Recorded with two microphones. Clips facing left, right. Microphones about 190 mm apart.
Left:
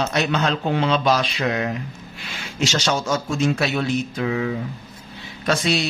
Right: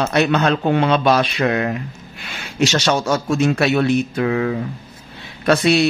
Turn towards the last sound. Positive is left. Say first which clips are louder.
# right 6 dB
turn(degrees=-60)  # may be behind; listen again after turning